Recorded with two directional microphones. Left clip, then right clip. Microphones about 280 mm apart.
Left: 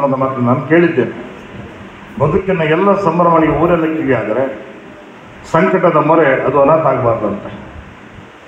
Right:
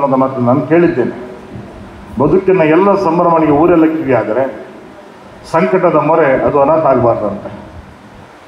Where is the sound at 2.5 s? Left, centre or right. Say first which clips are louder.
Right 3 dB; right.